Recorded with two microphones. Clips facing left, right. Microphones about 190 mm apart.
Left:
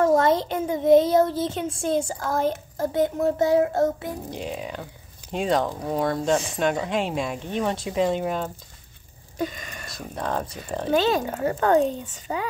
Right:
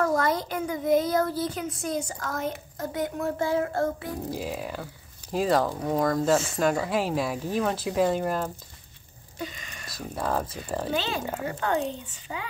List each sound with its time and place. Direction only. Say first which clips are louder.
0.0 s child singing: left 6 dB; 25° left (ahead or behind)
4.3 s speech: even; 5° right (ahead or behind)
9.4 s speech: left 7 dB; 50° left (ahead or behind)
9.9 s speech: even; 5° right (ahead or behind)
10.9 s a child's voice: left 10 dB; 45° left (ahead or behind)